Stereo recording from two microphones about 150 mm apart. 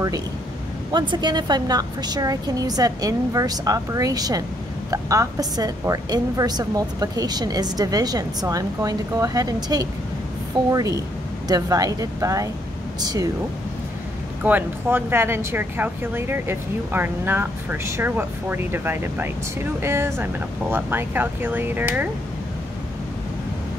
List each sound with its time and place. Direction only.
0.9 s a woman's voice: 30° right (ahead or behind)
14.4 s speech: 15° right (ahead or behind)